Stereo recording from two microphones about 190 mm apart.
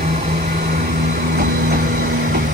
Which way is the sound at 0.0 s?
40° right (ahead or behind).